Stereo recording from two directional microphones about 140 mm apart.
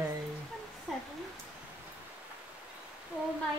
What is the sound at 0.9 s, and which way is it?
Speech, centre (ahead or behind).